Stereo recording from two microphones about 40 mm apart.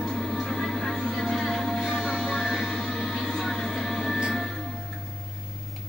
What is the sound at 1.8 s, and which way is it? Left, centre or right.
Music, centre.